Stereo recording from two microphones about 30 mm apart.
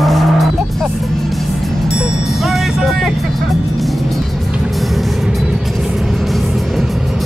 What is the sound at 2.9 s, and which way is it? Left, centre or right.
Vehicle, centre.